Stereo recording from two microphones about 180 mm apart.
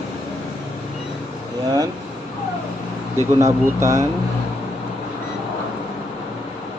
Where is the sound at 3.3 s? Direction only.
15° right (ahead or behind).